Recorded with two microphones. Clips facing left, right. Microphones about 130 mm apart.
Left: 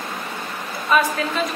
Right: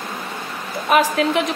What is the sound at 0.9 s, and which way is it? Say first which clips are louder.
Speech: right 3 dB; 70° right (ahead or behind).